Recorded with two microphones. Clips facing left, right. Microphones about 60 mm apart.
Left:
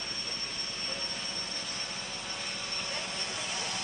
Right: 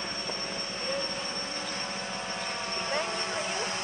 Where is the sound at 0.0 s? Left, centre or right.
Right.